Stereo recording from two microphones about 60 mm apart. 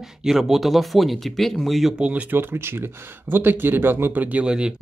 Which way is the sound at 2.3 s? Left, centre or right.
Right.